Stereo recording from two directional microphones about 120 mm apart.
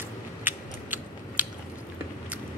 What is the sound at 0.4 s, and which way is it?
Mechanisms, 15° right (ahead or behind).